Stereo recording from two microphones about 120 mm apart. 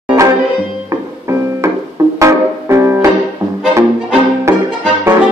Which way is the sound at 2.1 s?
25° right (ahead or behind).